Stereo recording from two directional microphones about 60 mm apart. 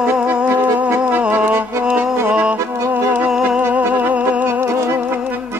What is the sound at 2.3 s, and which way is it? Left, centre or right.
Music, centre.